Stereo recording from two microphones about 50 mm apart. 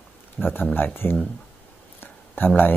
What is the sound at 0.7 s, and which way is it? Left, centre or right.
Speech, left.